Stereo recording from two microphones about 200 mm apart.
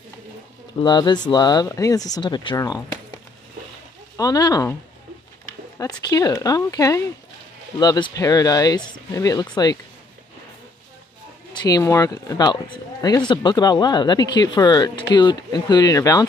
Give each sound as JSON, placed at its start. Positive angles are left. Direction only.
{"t": 0.8, "sound": "speech", "side_deg": 20}
{"t": 4.2, "sound": "speech", "side_deg": 20}
{"t": 5.8, "sound": "speech", "side_deg": 20}
{"t": 11.6, "sound": "speech", "side_deg": 15}